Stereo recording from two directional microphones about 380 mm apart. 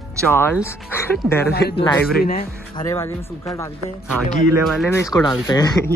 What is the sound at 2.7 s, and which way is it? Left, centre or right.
Speech, centre.